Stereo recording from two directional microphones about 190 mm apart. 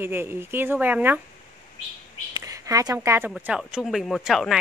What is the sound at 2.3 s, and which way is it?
Speech, 20° right (ahead or behind).